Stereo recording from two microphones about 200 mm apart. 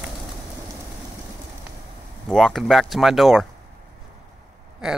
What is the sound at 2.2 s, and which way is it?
Speech, centre (ahead or behind).